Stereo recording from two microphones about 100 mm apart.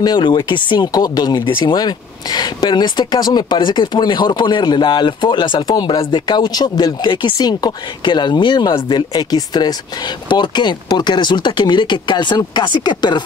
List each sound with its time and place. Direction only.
0.0 s speech: 45° left (ahead or behind)
7.3 s speech: 45° left (ahead or behind)